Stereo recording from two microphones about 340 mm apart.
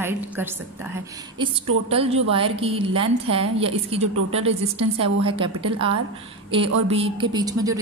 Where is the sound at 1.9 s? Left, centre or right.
Centre.